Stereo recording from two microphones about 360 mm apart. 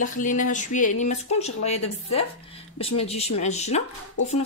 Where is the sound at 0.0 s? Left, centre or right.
Left.